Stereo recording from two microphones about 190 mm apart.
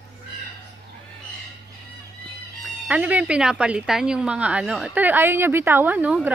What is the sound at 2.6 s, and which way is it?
A woman's voice, 10° right (ahead or behind).